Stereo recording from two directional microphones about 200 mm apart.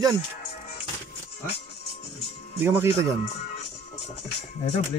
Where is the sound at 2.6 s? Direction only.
10° right (ahead or behind).